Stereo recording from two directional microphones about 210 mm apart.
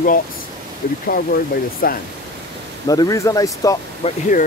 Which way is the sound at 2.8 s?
15° left (ahead or behind).